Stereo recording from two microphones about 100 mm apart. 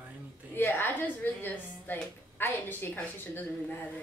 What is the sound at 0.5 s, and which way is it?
A woman's voice, 20° left (ahead or behind).